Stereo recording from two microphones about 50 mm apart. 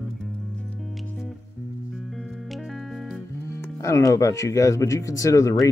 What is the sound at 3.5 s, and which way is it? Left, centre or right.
Speech, left.